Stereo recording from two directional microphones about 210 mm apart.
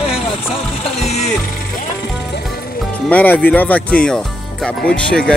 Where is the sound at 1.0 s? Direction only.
30° left (ahead or behind).